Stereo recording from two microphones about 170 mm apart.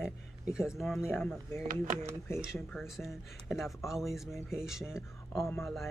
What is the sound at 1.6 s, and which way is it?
Speech, 50° right (ahead or behind).